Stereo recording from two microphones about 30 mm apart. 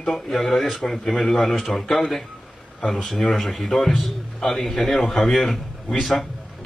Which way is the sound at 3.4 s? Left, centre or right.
Centre.